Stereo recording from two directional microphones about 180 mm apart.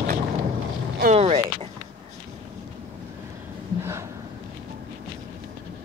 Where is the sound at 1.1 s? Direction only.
35° right (ahead or behind).